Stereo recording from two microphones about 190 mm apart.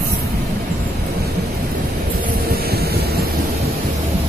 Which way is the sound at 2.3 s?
55° right (ahead or behind).